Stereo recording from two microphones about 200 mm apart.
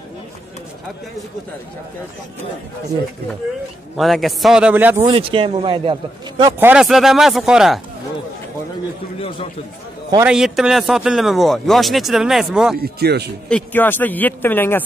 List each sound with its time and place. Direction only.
3.9 s a man's voice: centre (ahead or behind)
5.0 s a man's voice: 25° right (ahead or behind)
6.6 s a man's voice: 5° right (ahead or behind)
10.2 s a man's voice: 5° right (ahead or behind)
12.7 s speech: 50° right (ahead or behind)
13.5 s a man's voice: 5° left (ahead or behind)